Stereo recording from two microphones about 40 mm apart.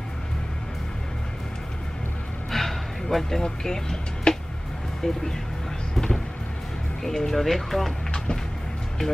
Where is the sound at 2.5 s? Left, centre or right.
Centre.